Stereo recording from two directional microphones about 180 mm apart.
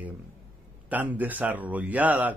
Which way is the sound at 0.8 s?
10° right (ahead or behind).